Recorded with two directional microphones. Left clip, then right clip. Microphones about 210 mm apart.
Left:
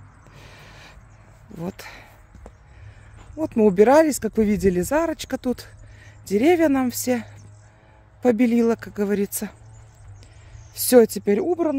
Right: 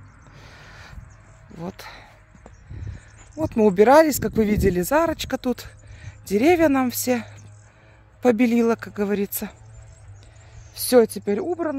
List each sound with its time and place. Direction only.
0.3 s a sound: 15° left (ahead or behind)
3.3 s speech: 10° left (ahead or behind)
10.7 s speech: 25° left (ahead or behind)